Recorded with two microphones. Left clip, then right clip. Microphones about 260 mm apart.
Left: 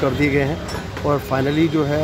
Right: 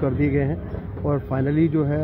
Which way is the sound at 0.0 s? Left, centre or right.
Centre.